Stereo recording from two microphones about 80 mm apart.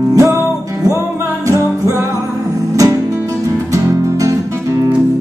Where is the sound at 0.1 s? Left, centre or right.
Right.